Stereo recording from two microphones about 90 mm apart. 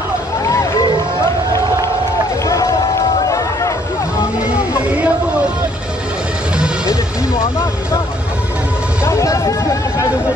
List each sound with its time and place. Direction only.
0.4 s hubbub: 35° left (ahead or behind)
2.4 s run: 40° left (ahead or behind)
4.4 s music: 15° right (ahead or behind)
7.3 s vehicle: 30° left (ahead or behind)
9.0 s a sound: 35° left (ahead or behind)